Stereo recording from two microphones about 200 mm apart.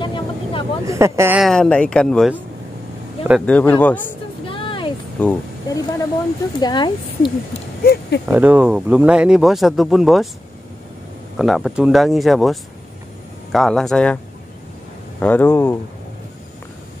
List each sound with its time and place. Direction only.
0.0 s vehicle: 25° left (ahead or behind)
0.8 s speech: 15° right (ahead or behind)
1.4 s speech: 5° left (ahead or behind)
4.5 s a sound: 25° left (ahead or behind)
5.2 s speech: 5° left (ahead or behind)
5.7 s a sound: 20° left (ahead or behind)
6.6 s speech: 20° left (ahead or behind)
7.8 s speech: 50° left (ahead or behind)
8.3 s speech: 10° right (ahead or behind)
11.3 s speech: centre (ahead or behind)